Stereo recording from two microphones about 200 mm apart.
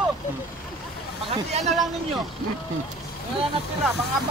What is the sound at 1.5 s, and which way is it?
Speech, 35° right (ahead or behind).